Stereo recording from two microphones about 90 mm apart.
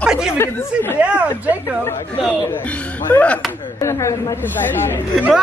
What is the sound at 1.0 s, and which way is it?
Speech, 15° right (ahead or behind).